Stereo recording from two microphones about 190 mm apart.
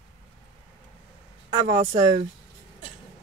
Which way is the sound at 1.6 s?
45° right (ahead or behind).